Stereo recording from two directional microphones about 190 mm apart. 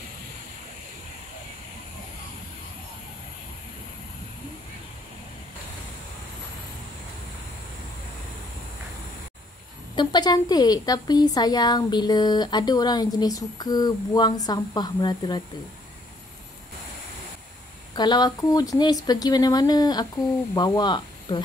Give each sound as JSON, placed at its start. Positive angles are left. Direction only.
{"t": 9.9, "sound": "a woman's voice", "side_deg": 20}
{"t": 17.9, "sound": "a woman's voice", "side_deg": 20}